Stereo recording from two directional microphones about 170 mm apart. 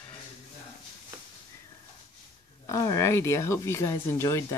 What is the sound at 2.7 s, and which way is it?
Speech, 20° left (ahead or behind).